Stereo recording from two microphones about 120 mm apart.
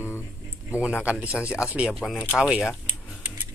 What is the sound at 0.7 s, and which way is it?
Speech, 10° right (ahead or behind).